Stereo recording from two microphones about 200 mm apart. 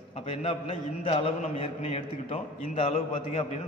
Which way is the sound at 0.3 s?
30° left (ahead or behind).